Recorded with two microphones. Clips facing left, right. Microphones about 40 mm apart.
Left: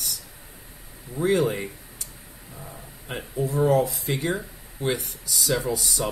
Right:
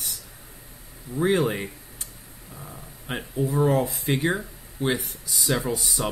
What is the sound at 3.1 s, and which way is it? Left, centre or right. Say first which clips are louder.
Speech: right 1 dB; right.